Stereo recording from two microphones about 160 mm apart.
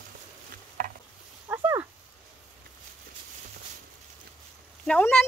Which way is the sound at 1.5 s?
10° right (ahead or behind).